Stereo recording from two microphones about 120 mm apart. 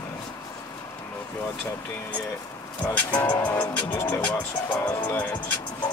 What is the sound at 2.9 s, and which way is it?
Speech, 15° left (ahead or behind).